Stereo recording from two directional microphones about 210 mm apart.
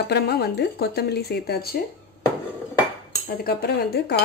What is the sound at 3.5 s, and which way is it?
Speech, 50° left (ahead or behind).